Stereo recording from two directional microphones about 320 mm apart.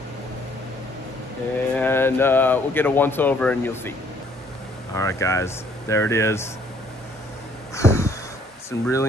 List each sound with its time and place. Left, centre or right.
1.8 s speech: centre
4.9 s speech: centre
7.7 s a sound: centre
8.6 s speech: centre